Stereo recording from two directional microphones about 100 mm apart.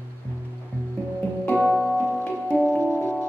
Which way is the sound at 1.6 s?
Centre (ahead or behind).